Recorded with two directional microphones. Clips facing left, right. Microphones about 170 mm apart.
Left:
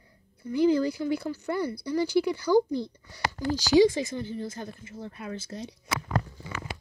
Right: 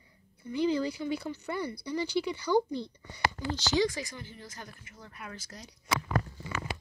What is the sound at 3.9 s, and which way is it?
A child's voice, 25° left (ahead or behind).